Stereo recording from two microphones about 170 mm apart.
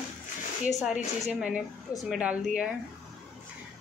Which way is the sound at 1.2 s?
5° right (ahead or behind).